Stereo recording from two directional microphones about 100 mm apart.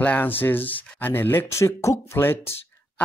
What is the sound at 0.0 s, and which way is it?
Speech, 15° left (ahead or behind).